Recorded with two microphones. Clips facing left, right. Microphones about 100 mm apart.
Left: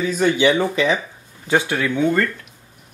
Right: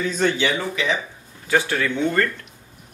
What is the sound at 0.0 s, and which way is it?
Speech, 5° left (ahead or behind).